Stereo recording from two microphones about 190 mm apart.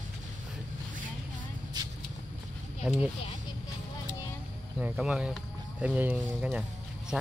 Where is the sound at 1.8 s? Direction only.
20° right (ahead or behind).